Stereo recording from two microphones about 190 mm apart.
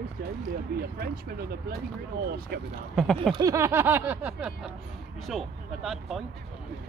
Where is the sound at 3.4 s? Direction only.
15° right (ahead or behind).